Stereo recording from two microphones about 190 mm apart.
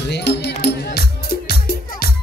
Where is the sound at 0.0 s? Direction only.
65° left (ahead or behind).